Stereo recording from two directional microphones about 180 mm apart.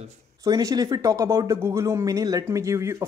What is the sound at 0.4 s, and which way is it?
Speech, 20° right (ahead or behind).